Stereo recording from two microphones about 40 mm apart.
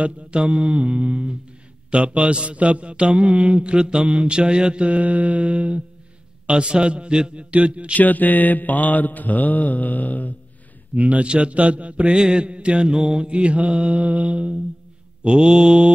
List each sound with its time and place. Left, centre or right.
0.0 s a man's voice: right
7.9 s mantra: left
11.0 s mantra: right
12.2 s a man's voice: right
12.9 s mantra: centre
13.3 s mantra: right
15.2 s a man's voice: centre